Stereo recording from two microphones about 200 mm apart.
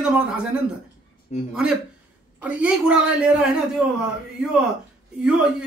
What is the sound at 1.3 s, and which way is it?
Speech, 35° left (ahead or behind).